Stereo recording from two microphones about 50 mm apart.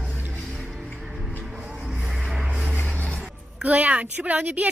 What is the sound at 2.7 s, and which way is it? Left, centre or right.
Music, left.